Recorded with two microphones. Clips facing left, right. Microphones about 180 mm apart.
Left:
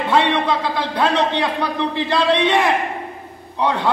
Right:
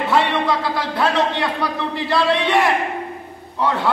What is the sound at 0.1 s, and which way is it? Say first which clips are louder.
A man's voice: left 2 dB; 20° left (ahead or behind).